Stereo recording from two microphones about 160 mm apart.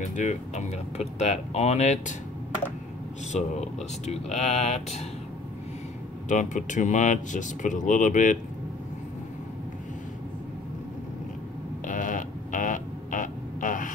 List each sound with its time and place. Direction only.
0.0 s speech: 50° left (ahead or behind)
3.3 s speech: 45° left (ahead or behind)
6.2 s speech: 50° left (ahead or behind)
11.8 s a sound: 55° left (ahead or behind)